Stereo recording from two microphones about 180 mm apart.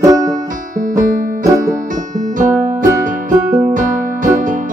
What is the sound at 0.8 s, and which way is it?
Music, 45° right (ahead or behind).